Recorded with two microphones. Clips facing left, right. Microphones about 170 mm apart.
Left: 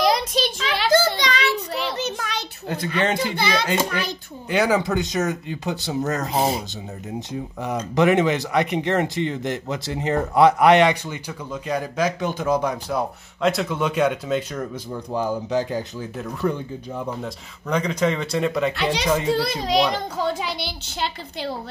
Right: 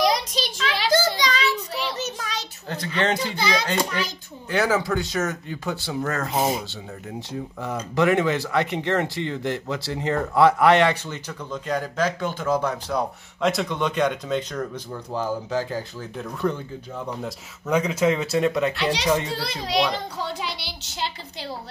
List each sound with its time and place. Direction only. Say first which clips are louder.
0.0 s child singing: left 2 dB; 55° left (ahead or behind)
3.0 s speech: left 1 dB; 5° left (ahead or behind)
6.3 s speech: left 1 dB; 30° left (ahead or behind)
7.9 s speech: left 2 dB; 20° left (ahead or behind)
13.4 s speech: left 2 dB; centre (ahead or behind); by 16.1 s 15° left (ahead or behind)
16.2 s speech: left 1 dB; 5° left (ahead or behind)
19.3 s a child's voice: left 4 dB; 50° left (ahead or behind)